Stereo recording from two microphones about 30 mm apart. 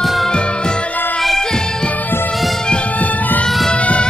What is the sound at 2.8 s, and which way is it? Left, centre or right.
Music, left.